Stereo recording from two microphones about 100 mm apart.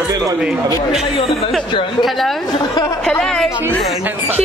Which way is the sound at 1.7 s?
50° left (ahead or behind).